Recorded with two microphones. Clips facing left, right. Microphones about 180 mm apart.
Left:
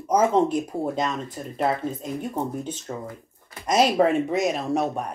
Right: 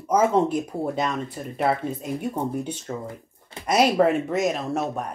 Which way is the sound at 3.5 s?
25° right (ahead or behind).